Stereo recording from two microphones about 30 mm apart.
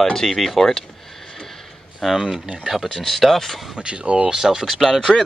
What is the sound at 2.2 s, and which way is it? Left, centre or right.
Speech, right.